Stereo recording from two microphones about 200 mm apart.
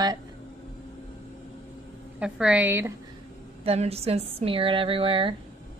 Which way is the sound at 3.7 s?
30° right (ahead or behind).